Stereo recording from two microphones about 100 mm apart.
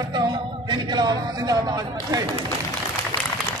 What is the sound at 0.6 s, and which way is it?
A man's voice, 45° right (ahead or behind).